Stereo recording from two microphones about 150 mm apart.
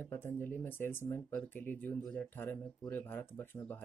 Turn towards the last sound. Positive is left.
turn(degrees=10)  # may be behind; listen again after turning